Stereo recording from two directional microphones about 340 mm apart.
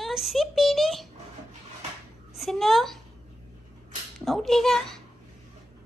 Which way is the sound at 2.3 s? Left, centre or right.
Centre.